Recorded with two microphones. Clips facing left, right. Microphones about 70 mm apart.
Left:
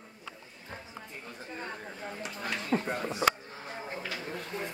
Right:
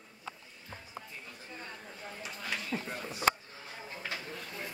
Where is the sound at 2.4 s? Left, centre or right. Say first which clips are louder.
Left 6 dB; left.